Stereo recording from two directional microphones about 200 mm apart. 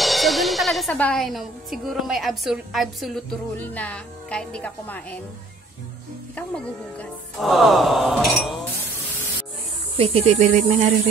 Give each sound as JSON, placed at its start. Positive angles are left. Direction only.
{"t": 0.0, "sound": "speech", "side_deg": 0}
{"t": 6.3, "sound": "speech", "side_deg": 5}
{"t": 9.9, "sound": "speech", "side_deg": -30}